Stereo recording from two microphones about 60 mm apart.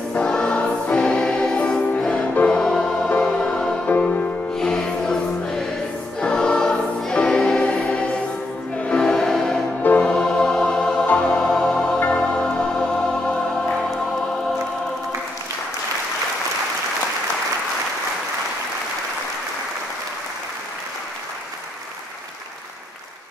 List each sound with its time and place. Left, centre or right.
0.1 s choir: centre
2.4 s music: centre
3.8 s music: left
4.6 s music: centre
6.2 s choir: centre
8.7 s music: centre
11.3 s music: centre